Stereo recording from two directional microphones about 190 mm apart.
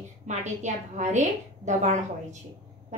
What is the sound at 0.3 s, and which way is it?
A woman's voice, 40° right (ahead or behind).